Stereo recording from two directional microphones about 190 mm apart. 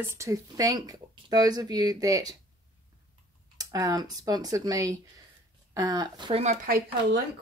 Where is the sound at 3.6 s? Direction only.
20° right (ahead or behind).